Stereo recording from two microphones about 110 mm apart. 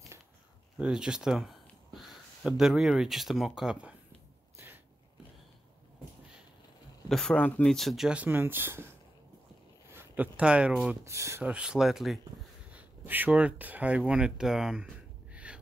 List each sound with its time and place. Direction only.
0.7 s speech: 10° right (ahead or behind)
7.1 s speech: 5° left (ahead or behind)
7.7 s speech: centre (ahead or behind)
8.2 s speech: 15° right (ahead or behind)
9.9 s speech: 15° right (ahead or behind)
11.1 s speech: 25° right (ahead or behind)
11.4 s speech: 10° right (ahead or behind)
12.7 s speech: 15° right (ahead or behind)